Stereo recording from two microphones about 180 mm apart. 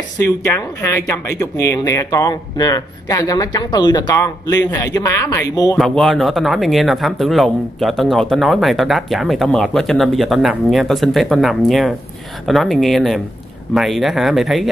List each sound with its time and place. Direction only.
0.2 s speech: 15° left (ahead or behind)
5.8 s speech: centre (ahead or behind)